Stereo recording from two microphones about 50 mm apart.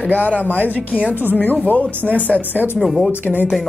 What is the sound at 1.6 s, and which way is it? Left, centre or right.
Speech, left.